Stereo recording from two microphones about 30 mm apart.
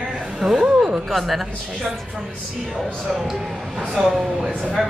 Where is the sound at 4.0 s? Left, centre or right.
Centre.